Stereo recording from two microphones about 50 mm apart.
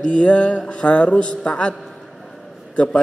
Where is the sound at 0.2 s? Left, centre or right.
Left.